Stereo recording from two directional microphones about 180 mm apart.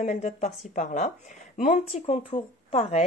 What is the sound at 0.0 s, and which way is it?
A woman's voice, 40° left (ahead or behind).